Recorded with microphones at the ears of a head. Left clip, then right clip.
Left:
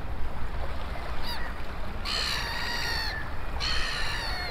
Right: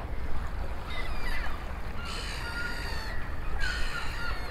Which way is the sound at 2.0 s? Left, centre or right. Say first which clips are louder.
Left 9 dB; left.